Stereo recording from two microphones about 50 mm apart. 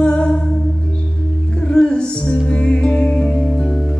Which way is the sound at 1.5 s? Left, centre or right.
Centre.